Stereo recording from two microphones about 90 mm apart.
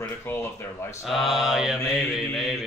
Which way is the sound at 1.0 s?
Centre (ahead or behind).